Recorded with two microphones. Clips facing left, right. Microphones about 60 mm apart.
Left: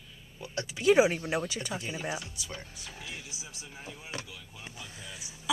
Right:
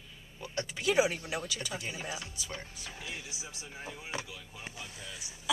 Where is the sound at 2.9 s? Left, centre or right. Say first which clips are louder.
Right 1 dB; right.